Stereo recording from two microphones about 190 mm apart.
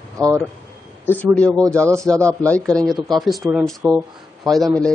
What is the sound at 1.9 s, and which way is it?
Speech, 15° right (ahead or behind).